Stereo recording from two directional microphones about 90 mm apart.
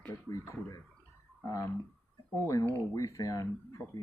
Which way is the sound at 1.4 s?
30° left (ahead or behind).